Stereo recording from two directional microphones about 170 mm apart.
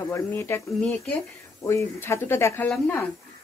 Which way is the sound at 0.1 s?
10° left (ahead or behind).